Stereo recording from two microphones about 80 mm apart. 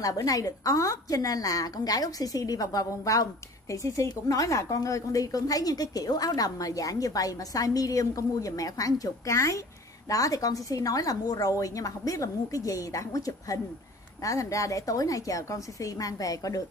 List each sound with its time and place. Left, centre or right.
0.0 s a woman's voice: left